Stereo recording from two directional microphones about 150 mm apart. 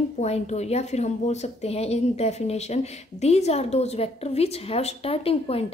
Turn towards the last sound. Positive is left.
turn(degrees=40)  # may be behind; listen again after turning